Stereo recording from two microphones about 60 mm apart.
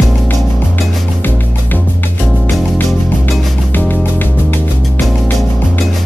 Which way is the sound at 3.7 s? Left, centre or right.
Left.